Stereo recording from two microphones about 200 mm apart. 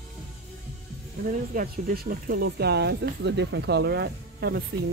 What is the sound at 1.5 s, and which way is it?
Speech, 45° right (ahead or behind).